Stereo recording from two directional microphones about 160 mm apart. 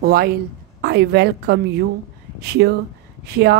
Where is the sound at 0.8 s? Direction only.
90° right.